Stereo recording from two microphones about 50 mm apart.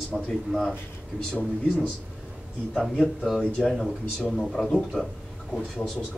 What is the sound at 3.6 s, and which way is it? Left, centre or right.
A man's voice, centre.